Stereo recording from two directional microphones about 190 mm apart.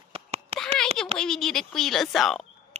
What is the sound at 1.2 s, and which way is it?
Speech, centre (ahead or behind).